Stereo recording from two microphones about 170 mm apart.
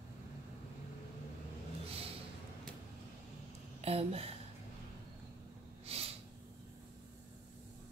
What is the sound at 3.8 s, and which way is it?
Speech, 35° right (ahead or behind).